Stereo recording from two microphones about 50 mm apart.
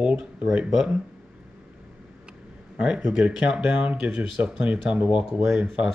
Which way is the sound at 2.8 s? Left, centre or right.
Centre.